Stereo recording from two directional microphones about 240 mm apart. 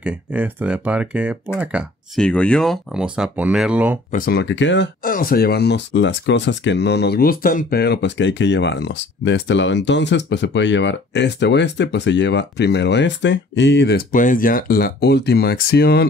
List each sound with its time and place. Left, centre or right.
0.0 s speech: centre
4.1 s speech: left